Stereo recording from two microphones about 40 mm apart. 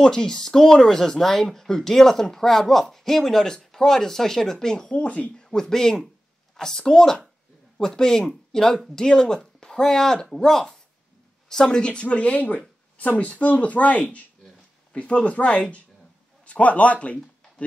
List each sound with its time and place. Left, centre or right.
0.0 s a man's voice: centre
11.8 s speech: left